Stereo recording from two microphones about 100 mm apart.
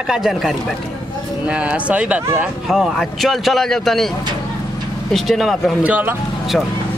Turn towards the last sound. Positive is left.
turn(degrees=-15)  # may be behind; listen again after turning